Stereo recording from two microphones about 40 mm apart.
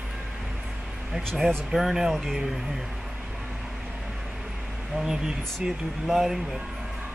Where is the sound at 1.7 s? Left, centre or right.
Centre.